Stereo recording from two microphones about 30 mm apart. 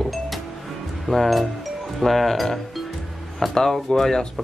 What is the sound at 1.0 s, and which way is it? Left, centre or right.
Speech, centre.